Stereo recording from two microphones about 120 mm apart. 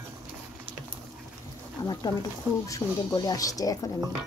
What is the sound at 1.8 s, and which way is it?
Speech, 35° left (ahead or behind).